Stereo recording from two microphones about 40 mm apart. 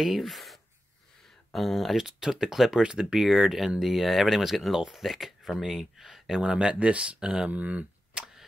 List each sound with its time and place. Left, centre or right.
0.0 s speech: centre; by 3.2 s right
3.2 s speech: centre; by 7.8 s right